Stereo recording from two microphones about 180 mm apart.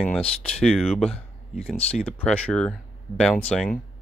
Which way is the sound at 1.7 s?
35° left (ahead or behind).